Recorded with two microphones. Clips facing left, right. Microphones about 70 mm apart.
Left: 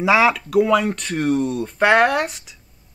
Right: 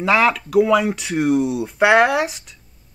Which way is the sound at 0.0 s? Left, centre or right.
Centre.